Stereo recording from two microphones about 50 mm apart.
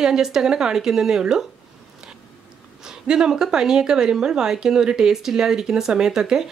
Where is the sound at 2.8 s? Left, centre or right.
Centre.